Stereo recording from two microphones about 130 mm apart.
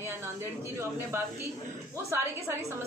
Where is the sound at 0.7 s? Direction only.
20° right (ahead or behind).